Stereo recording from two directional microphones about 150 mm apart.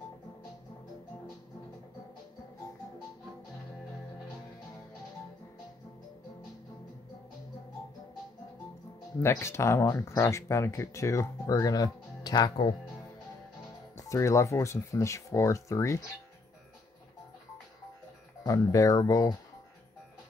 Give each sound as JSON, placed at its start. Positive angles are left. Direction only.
{"t": 9.2, "sound": "speech", "side_deg": 20}
{"t": 14.0, "sound": "speech", "side_deg": 20}
{"t": 18.4, "sound": "speech", "side_deg": 20}